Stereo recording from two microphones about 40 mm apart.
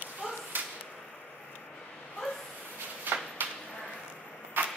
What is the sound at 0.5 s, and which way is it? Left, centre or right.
Whip, right.